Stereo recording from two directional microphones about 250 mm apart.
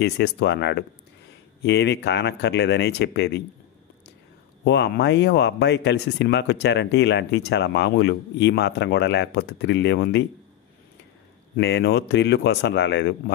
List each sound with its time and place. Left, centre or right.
0.0 s speech: left
4.6 s speech: left
11.5 s speech: left